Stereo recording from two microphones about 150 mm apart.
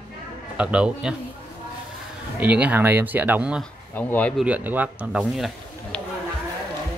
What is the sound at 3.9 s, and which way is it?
Speech, 10° left (ahead or behind).